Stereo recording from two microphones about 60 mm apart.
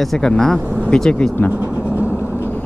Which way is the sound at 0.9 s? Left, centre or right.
Centre.